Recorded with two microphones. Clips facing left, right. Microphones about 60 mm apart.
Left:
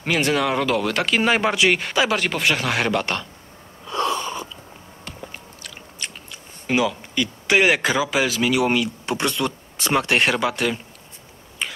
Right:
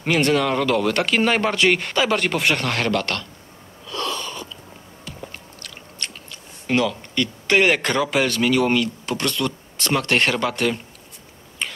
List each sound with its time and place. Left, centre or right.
0.0 s speech: centre
3.8 s wheeze: centre
5.2 s biting: centre
6.7 s speech: centre
11.6 s tick-tock: centre